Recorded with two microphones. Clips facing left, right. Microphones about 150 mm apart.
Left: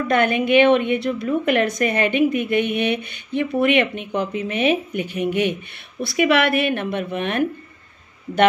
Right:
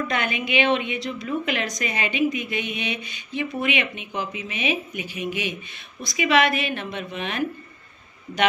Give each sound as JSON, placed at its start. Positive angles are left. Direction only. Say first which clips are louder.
{"t": 0.1, "sound": "a woman's voice", "louder": "left 9 dB", "side_deg": 55}